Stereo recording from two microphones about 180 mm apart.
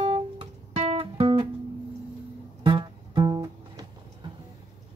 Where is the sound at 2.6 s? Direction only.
25° right (ahead or behind).